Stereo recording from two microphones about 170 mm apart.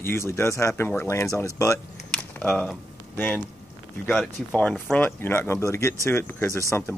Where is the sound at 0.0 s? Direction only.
15° left (ahead or behind).